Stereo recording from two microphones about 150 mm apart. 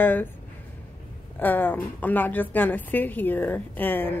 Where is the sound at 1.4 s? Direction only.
15° left (ahead or behind).